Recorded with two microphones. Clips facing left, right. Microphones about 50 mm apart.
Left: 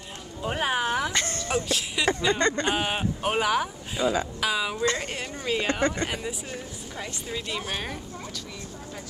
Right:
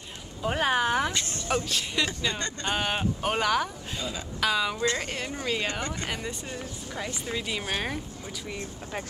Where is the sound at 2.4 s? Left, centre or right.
Left.